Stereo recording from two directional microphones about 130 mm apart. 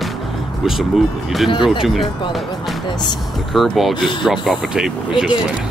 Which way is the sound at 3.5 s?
Centre (ahead or behind).